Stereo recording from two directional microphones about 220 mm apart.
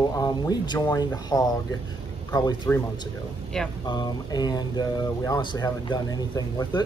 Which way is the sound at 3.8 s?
20° left (ahead or behind).